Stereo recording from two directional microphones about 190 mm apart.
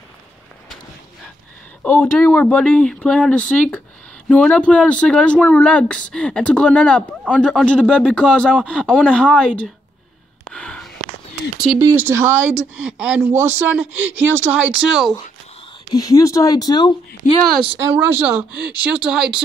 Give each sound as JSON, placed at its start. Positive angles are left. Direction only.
{"t": 1.8, "sound": "speech", "side_deg": 10}
{"t": 10.4, "sound": "gasp", "side_deg": 5}
{"t": 11.8, "sound": "speech", "side_deg": -10}
{"t": 12.3, "sound": "speech", "side_deg": -90}
{"t": 13.1, "sound": "speech", "side_deg": -10}
{"t": 13.9, "sound": "speech", "side_deg": -90}
{"t": 14.7, "sound": "speech", "side_deg": -5}
{"t": 15.9, "sound": "speech", "side_deg": 20}
{"t": 17.8, "sound": "speech", "side_deg": -10}